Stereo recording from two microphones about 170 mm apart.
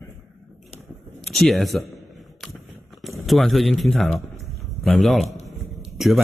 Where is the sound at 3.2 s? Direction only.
Centre (ahead or behind).